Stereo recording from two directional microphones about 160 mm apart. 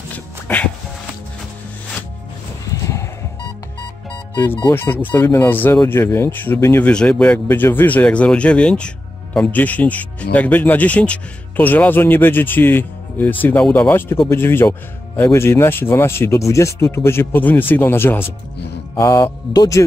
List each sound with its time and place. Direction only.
0.1 s dog: 10° left (ahead or behind)
2.7 s horse: 20° left (ahead or behind)
4.7 s a man's voice: 10° left (ahead or behind)